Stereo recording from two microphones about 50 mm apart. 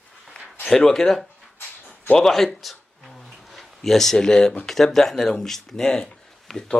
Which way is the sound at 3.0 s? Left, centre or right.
Centre.